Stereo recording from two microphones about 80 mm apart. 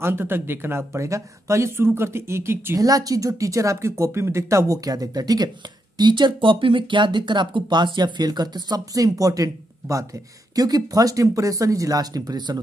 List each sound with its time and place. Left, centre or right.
0.0 s speech: right
2.8 s speech: right
5.9 s speech: right